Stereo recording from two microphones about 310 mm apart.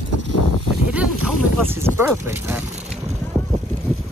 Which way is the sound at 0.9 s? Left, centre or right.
Centre.